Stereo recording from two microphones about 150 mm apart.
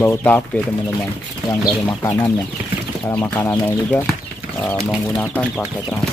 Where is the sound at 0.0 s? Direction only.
15° left (ahead or behind).